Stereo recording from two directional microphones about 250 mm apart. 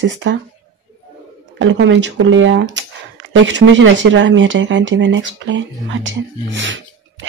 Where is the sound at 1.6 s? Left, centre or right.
Right.